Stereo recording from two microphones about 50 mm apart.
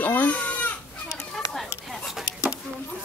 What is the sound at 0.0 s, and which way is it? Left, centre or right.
Baby cry, left.